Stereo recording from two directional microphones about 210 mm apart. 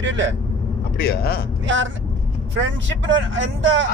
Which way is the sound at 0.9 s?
45° left (ahead or behind).